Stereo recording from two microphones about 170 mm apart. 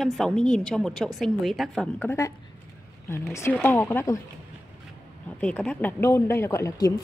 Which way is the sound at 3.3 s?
15° left (ahead or behind).